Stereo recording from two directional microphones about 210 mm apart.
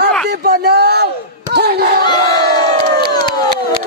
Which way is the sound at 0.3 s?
50° right (ahead or behind).